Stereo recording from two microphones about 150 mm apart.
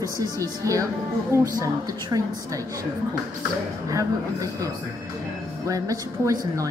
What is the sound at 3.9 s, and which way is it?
Speech, 25° right (ahead or behind).